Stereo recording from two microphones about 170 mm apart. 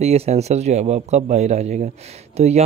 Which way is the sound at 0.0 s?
35° right (ahead or behind).